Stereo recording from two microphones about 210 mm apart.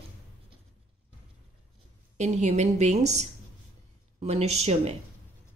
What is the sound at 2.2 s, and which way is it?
A woman's voice, 30° right (ahead or behind).